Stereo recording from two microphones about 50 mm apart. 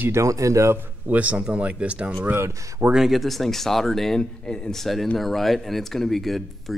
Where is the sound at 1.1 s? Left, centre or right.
Right.